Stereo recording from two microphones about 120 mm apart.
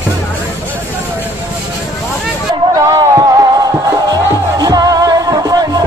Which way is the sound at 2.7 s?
35° right (ahead or behind).